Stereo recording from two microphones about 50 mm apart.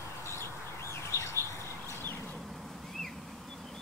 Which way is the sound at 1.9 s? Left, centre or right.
Left.